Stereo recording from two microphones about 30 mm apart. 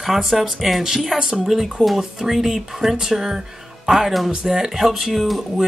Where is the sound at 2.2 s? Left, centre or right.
Centre.